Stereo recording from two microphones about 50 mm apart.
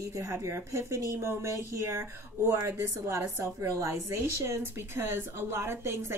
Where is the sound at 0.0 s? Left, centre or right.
Right.